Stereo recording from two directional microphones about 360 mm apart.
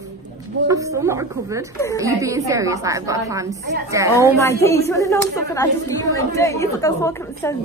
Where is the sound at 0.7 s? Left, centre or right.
Centre.